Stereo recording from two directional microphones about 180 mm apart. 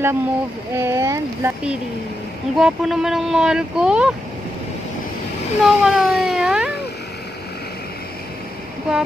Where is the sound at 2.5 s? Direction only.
Centre (ahead or behind).